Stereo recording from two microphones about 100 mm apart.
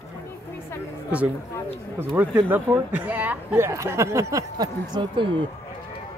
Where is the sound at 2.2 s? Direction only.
25° right (ahead or behind).